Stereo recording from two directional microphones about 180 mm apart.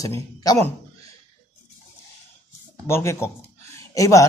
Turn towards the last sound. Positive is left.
turn(degrees=20)  # may be behind; listen again after turning